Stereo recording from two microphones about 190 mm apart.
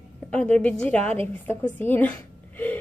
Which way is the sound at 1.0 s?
30° right (ahead or behind).